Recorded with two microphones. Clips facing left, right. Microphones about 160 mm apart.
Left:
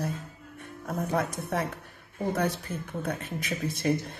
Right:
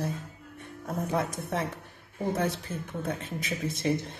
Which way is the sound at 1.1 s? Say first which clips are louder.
Left 1 dB; 25° right (ahead or behind).